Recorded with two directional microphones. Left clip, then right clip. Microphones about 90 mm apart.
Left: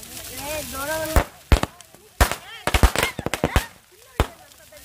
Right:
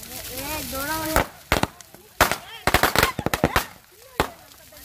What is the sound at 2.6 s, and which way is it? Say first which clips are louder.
Firecracker: right 3 dB; 20° right (ahead or behind).